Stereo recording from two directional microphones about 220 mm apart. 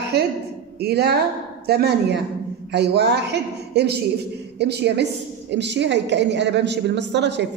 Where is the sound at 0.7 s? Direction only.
45° right (ahead or behind).